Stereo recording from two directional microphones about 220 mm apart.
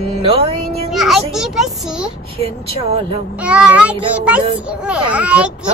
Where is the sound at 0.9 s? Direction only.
Centre (ahead or behind).